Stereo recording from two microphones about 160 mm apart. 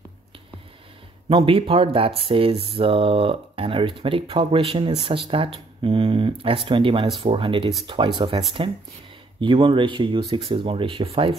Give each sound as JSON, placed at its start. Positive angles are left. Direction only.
{"t": 1.3, "sound": "speech", "side_deg": -35}